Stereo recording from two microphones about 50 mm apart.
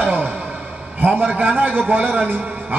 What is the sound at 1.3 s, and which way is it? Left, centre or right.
A man's voice, right.